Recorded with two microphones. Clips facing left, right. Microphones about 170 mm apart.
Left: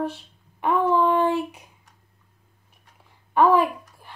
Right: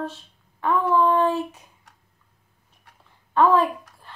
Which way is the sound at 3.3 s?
10° left (ahead or behind).